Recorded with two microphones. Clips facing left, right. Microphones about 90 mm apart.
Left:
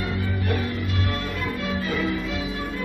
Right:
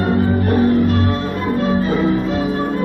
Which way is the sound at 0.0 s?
40° right (ahead or behind).